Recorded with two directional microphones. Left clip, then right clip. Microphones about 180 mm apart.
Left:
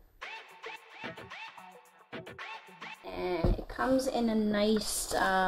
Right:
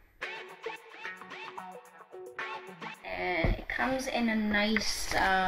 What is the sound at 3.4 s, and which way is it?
Speech, 10° left (ahead or behind).